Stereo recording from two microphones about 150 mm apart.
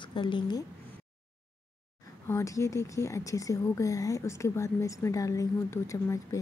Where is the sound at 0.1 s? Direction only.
30° left (ahead or behind).